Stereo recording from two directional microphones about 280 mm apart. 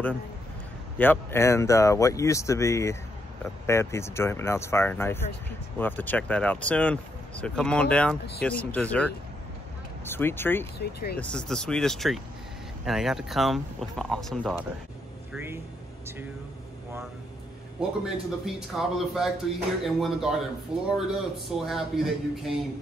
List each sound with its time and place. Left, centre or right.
0.9 s speech: centre
10.8 s speech: left
11.1 s speech: centre
17.7 s speech: centre